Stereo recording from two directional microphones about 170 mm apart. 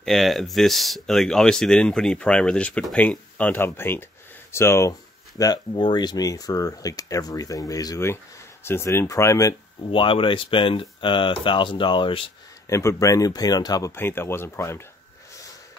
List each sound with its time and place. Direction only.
0.0 s speech: centre (ahead or behind); by 9.6 s 20° left (ahead or behind)
9.8 s speech: 30° left (ahead or behind)
12.6 s speech: 15° left (ahead or behind)